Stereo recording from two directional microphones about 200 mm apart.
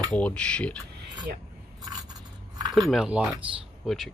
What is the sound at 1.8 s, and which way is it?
Scrape, 20° right (ahead or behind).